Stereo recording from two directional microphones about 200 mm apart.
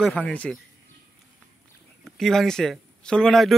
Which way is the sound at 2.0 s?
Centre (ahead or behind).